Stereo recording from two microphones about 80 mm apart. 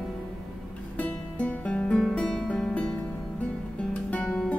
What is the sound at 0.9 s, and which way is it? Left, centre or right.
Music, centre.